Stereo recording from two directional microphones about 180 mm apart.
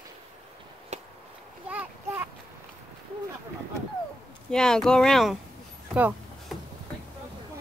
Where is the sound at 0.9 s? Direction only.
40° right (ahead or behind).